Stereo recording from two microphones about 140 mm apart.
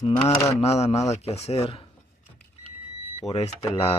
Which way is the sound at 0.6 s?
50° left (ahead or behind).